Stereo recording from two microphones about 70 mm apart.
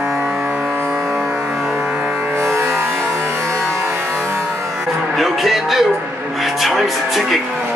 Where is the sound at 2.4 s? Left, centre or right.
Right.